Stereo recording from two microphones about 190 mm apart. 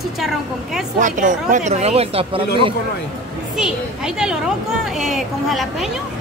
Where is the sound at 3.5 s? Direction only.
5° right (ahead or behind).